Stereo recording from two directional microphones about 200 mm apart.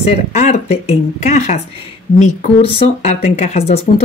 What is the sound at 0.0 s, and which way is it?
Speech, 35° left (ahead or behind).